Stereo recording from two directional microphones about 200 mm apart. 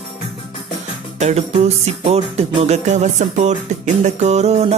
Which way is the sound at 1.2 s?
35° right (ahead or behind).